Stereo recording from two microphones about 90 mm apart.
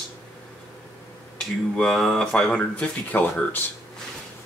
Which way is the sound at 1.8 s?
5° left (ahead or behind).